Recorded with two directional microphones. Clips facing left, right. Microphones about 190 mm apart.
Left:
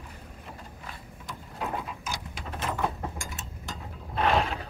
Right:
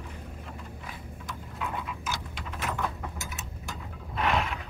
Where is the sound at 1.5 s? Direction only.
35° left (ahead or behind).